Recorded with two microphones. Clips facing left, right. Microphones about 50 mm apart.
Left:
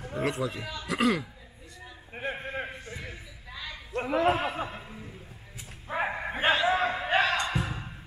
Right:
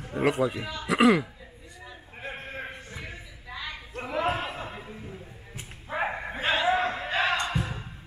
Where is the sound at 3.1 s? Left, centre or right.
Centre.